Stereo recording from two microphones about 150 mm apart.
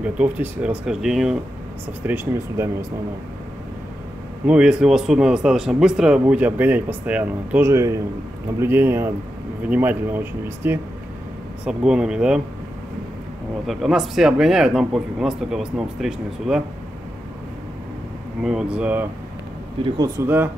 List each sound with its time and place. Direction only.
0.0 s speech: 10° right (ahead or behind)
2.0 s speech: 15° right (ahead or behind)
4.5 s speech: 5° right (ahead or behind)
13.7 s speech: centre (ahead or behind)
18.4 s speech: 5° right (ahead or behind)